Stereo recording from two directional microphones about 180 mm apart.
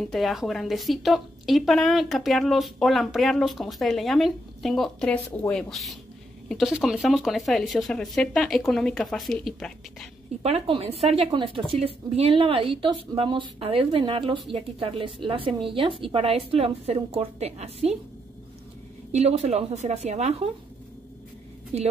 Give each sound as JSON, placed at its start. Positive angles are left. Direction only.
{"t": 0.1, "sound": "a woman's voice", "side_deg": 0}
{"t": 10.4, "sound": "a woman's voice", "side_deg": -35}
{"t": 19.1, "sound": "a woman's voice", "side_deg": -35}
{"t": 21.7, "sound": "a woman's voice", "side_deg": -35}